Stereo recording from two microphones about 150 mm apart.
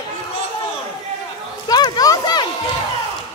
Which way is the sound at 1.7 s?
25° left (ahead or behind).